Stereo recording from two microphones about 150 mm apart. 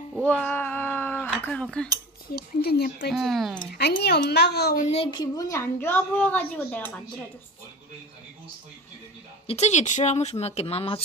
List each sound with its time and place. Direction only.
0.2 s cat: 10° left (ahead or behind)
1.4 s a woman's voice: 5° left (ahead or behind)
2.3 s speech: 90° left
3.1 s speech: centre (ahead or behind)
3.7 s speech: 90° left
4.9 s a woman's voice: 30° left (ahead or behind); by 7.0 s 10° left (ahead or behind)
9.5 s a woman's voice: 50° left (ahead or behind)